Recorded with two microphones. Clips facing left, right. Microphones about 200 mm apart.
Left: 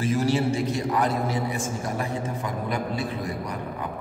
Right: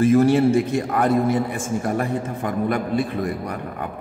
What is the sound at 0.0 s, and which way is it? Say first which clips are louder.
A man's voice: right 8 dB; 55° right (ahead or behind).